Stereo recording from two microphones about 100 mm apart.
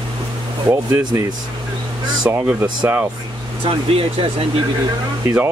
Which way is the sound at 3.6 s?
65° right (ahead or behind).